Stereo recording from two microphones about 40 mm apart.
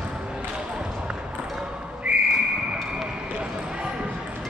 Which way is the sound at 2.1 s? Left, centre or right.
Right.